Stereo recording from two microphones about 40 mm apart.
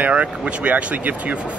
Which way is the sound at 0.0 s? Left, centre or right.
Right.